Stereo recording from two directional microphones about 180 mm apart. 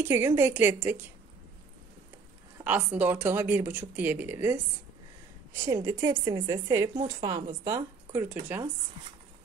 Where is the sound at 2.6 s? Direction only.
10° right (ahead or behind).